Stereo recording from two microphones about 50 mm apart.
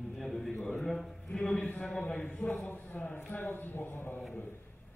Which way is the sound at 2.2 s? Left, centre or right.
Left.